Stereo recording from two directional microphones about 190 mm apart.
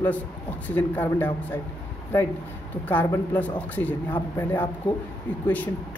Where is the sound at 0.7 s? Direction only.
10° left (ahead or behind).